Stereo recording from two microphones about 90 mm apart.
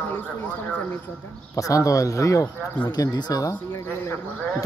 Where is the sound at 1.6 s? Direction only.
40° left (ahead or behind).